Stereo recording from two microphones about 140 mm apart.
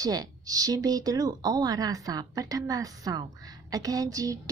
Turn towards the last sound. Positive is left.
turn(degrees=-25)  # may be behind; listen again after turning